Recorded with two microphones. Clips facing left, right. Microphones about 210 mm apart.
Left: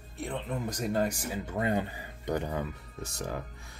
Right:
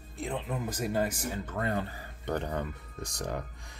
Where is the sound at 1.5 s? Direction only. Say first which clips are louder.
Left 4 dB; 15° left (ahead or behind).